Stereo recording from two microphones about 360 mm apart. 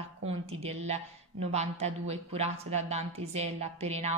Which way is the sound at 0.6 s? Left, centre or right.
Centre.